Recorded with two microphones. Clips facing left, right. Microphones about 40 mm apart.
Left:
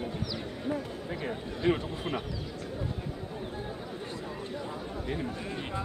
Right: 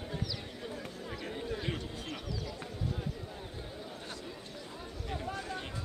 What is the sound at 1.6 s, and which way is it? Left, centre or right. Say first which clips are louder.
Speech: left 10 dB; left.